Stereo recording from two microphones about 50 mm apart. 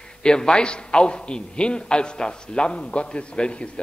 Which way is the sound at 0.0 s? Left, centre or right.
Centre.